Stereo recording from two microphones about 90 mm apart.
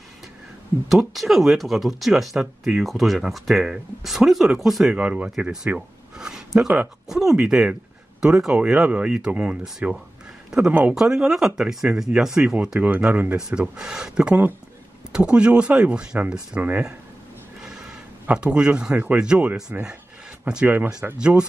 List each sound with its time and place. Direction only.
0.8 s speech: centre (ahead or behind)
4.9 s speech: 15° right (ahead or behind)
5.7 s a sound: 10° right (ahead or behind)
7.1 s speech: 5° right (ahead or behind)
11.0 s speech: 5° right (ahead or behind)
17.6 s a sound: 10° right (ahead or behind)
18.2 s speech: 10° right (ahead or behind)
20.6 s speech: 20° right (ahead or behind)
21.2 s speech: 10° right (ahead or behind)